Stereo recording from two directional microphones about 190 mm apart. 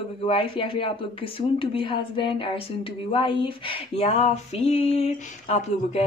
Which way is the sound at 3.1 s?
25° left (ahead or behind).